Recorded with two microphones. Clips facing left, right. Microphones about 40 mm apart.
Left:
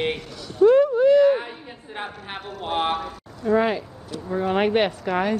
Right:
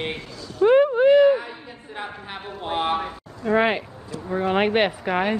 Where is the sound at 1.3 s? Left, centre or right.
Centre.